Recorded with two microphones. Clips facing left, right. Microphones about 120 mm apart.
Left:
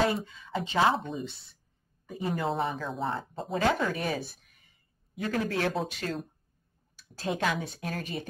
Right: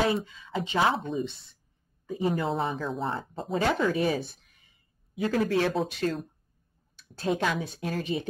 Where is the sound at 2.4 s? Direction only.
Centre (ahead or behind).